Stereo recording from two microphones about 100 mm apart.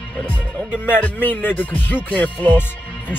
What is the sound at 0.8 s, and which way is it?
Speech, 20° left (ahead or behind).